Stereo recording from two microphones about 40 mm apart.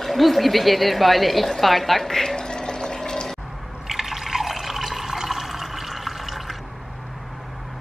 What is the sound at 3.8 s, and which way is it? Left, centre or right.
Drip, centre.